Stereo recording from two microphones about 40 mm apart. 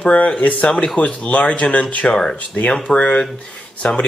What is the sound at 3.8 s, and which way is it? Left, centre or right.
Speech, left.